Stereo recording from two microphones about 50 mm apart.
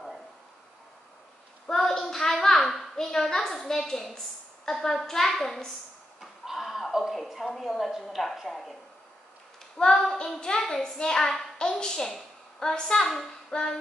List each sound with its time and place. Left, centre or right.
1.7 s a sound: centre
4.6 s clapping: centre
6.4 s a woman's voice: centre
9.8 s clapping: centre
13.5 s music: centre